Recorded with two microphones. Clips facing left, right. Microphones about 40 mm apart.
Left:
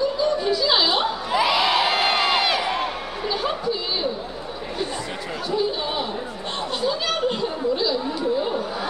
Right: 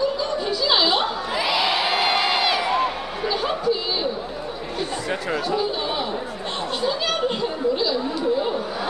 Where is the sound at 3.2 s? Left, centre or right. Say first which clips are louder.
Right 1 dB; centre.